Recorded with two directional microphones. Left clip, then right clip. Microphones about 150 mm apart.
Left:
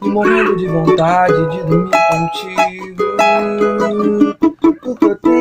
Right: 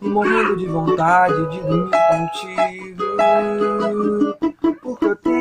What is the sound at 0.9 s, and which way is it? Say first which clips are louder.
Music: left 2 dB; 10° left (ahead or behind).